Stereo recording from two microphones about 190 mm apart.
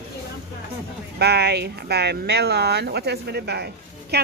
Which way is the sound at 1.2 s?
60° right (ahead or behind).